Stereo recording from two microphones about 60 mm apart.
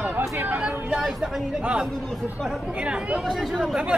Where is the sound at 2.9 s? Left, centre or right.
Centre.